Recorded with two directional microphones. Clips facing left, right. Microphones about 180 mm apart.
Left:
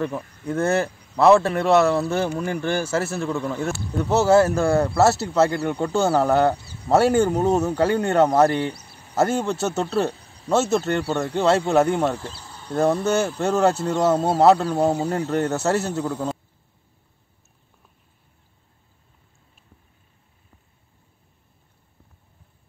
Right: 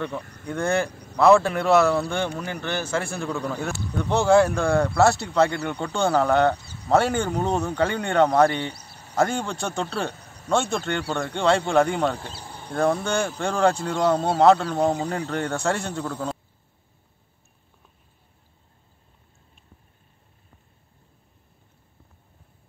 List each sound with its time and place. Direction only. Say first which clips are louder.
0.5 s speech: left 3 dB; 5° left (ahead or behind)
2.4 s speech: left 5 dB; 45° left (ahead or behind)
2.8 s speech: left 3 dB; 5° left (ahead or behind)
12.4 s insect: right 3 dB; 55° right (ahead or behind)
12.8 s speech: left 3 dB; 5° left (ahead or behind)